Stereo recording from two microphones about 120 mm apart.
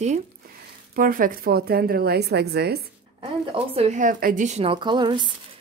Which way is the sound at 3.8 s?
90° right.